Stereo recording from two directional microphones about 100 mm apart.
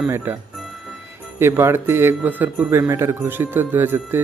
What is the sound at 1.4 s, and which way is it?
Speech, 25° right (ahead or behind).